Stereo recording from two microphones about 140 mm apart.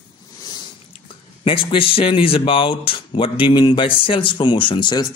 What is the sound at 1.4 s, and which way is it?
Speech, 40° left (ahead or behind).